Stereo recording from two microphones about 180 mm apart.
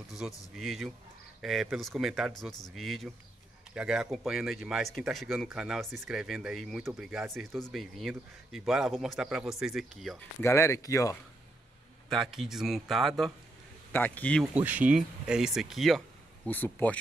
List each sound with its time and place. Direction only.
0.6 s speech: centre (ahead or behind)
10.4 s speech: 15° left (ahead or behind)
12.1 s speech: centre (ahead or behind)
14.4 s speech: 10° right (ahead or behind); by 17.0 s 10° left (ahead or behind)